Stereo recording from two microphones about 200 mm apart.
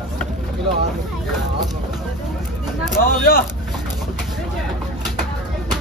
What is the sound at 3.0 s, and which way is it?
Vehicle, 45° left (ahead or behind).